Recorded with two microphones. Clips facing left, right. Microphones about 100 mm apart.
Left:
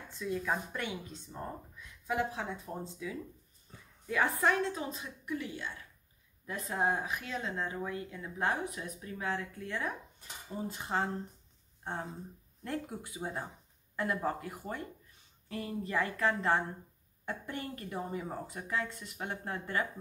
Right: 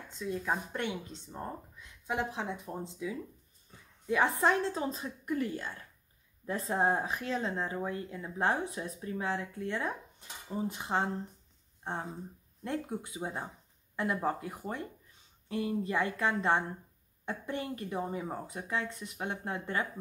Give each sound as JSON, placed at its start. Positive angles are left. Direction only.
{"t": 0.2, "sound": "speech", "side_deg": -25}
{"t": 3.7, "sound": "a sound", "side_deg": 25}
{"t": 4.1, "sound": "a woman's voice", "side_deg": -25}
{"t": 6.4, "sound": "a woman's voice", "side_deg": -30}